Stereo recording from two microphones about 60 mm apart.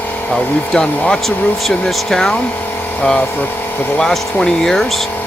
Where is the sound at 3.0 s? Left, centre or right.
Left.